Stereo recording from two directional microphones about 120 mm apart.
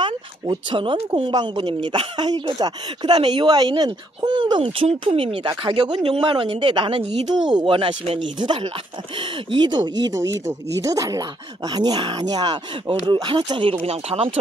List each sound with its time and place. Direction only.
0.0 s speech: 40° right (ahead or behind)
5.0 s a woman's voice: 55° right (ahead or behind)
8.4 s speech: 40° right (ahead or behind)